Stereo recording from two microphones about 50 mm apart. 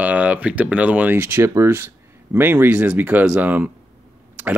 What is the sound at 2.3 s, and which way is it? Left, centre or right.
Speech, right.